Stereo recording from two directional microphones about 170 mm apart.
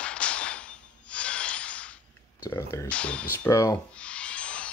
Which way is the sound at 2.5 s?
15° left (ahead or behind).